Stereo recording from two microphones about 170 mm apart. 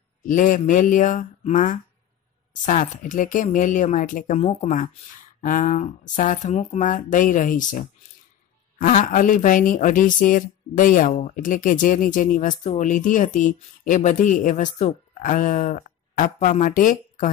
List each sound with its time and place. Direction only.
0.2 s speech: 50° left (ahead or behind)